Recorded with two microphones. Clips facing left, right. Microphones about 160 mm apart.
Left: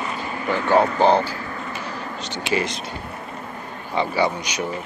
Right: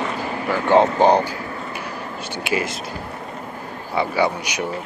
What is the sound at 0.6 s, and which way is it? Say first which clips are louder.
Speech: right 2 dB; 20° right (ahead or behind).